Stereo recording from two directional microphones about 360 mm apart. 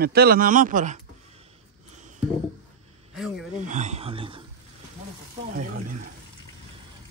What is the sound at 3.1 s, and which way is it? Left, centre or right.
Speech, centre.